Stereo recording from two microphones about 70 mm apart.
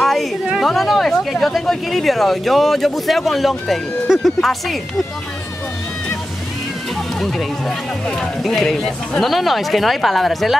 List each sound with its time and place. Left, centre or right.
0.0 s a sound: centre
0.6 s speech: centre
7.2 s speech: centre